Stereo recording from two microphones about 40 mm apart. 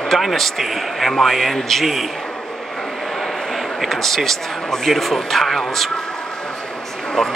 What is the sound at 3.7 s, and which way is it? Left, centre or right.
Speech, centre.